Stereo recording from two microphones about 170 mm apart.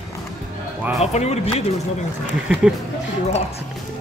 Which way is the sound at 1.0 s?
40° left (ahead or behind).